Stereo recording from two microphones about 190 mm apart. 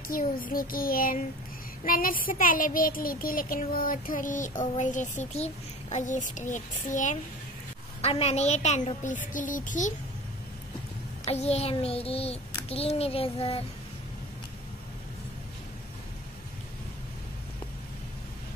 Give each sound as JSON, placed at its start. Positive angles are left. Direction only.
{"t": 0.1, "sound": "speech", "side_deg": 50}
{"t": 8.0, "sound": "child singing", "side_deg": 35}
{"t": 11.2, "sound": "child singing", "side_deg": 35}